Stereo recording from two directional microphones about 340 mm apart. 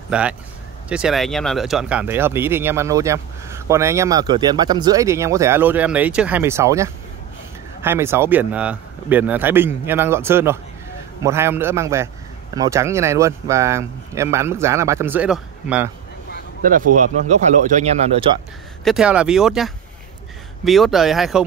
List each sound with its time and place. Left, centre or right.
0.1 s speech: centre
16.6 s speech: right
18.9 s speech: centre